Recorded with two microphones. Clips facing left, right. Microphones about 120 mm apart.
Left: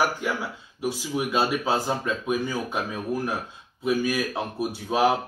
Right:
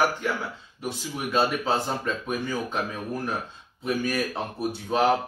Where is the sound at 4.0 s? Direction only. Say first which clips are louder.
Left 1 dB; 5° left (ahead or behind).